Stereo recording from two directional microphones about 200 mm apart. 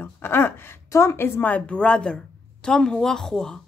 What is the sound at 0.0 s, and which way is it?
A woman's voice, 10° left (ahead or behind).